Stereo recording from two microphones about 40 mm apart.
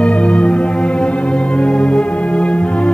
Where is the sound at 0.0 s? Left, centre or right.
Left.